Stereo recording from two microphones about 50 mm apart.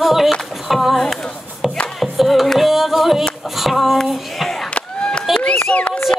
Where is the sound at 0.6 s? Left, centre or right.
Centre.